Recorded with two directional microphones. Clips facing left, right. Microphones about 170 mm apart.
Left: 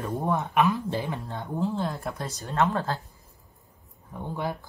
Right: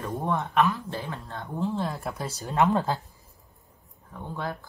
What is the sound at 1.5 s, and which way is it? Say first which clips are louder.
Speech: left 1 dB; centre (ahead or behind).